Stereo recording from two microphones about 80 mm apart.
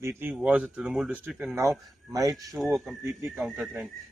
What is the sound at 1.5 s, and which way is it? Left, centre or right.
Speech, right.